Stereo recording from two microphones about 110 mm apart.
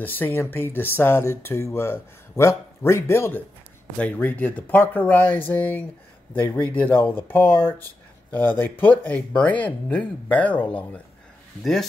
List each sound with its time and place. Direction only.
0.0 s speech: 15° left (ahead or behind)